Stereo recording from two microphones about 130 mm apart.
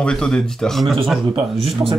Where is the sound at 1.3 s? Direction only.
45° right (ahead or behind).